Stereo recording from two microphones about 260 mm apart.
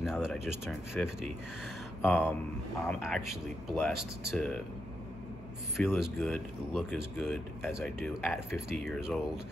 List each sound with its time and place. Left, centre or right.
0.0 s speech: centre
3.9 s speech: right
4.3 s speech: centre
5.8 s speech: centre